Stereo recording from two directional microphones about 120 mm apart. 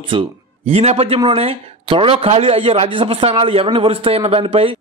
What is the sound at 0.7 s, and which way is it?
A man's voice, 55° right (ahead or behind).